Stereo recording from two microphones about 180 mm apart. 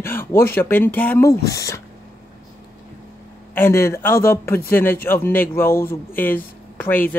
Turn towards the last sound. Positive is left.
turn(degrees=10)  # may be behind; listen again after turning